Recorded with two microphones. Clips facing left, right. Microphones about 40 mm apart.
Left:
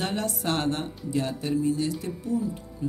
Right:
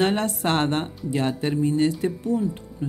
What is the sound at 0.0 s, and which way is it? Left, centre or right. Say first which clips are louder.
A man's voice: right 6 dB; right.